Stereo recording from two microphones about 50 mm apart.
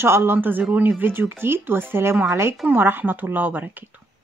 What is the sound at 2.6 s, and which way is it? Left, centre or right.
Speech, right.